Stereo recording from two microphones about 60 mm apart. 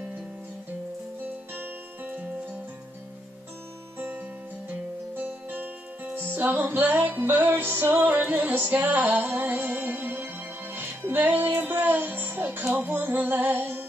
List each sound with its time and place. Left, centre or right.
1.5 s music: right
5.1 s music: right